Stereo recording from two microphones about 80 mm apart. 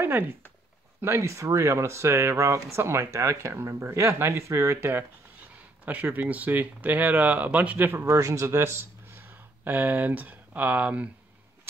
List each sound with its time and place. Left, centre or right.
0.0 s speech: right
1.0 s speech: right; by 11.1 s centre